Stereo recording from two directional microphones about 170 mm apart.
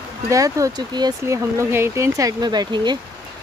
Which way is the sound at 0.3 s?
20° right (ahead or behind).